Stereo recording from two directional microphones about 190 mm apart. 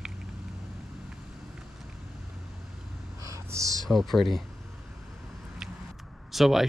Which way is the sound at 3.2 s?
15° right (ahead or behind).